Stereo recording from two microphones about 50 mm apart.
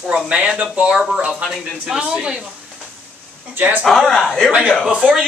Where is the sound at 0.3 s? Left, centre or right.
Right.